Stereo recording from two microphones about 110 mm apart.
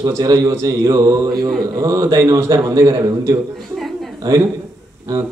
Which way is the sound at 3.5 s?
Centre (ahead or behind).